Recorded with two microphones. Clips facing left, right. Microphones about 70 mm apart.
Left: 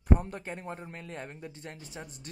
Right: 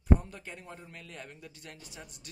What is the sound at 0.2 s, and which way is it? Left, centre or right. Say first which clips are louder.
Speech: left 7 dB; left.